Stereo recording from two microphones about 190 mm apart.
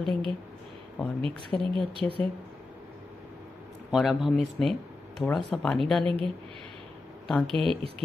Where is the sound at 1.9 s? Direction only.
30° right (ahead or behind).